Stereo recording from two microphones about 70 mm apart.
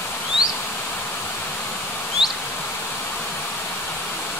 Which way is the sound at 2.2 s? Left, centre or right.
Centre.